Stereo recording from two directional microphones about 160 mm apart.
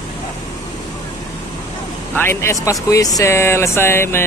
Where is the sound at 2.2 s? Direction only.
15° left (ahead or behind).